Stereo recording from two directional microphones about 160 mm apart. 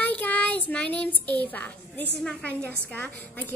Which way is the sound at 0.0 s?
10° left (ahead or behind).